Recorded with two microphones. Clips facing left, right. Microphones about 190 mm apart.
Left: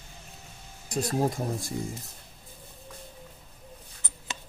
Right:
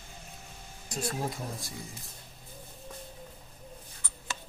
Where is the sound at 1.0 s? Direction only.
40° left (ahead or behind).